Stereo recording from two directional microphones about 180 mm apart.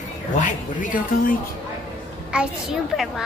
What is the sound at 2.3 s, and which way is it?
Speech, 5° right (ahead or behind).